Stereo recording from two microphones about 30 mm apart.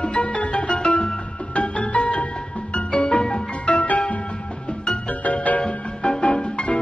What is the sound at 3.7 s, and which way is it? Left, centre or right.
Music, left.